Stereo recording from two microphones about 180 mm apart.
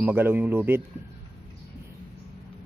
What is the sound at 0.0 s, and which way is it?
Speech, 10° right (ahead or behind).